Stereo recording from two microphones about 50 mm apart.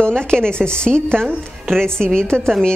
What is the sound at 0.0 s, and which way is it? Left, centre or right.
A woman's voice, centre.